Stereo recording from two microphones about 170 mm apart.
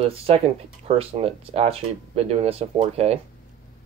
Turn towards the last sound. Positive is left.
turn(degrees=-35)  # may be behind; listen again after turning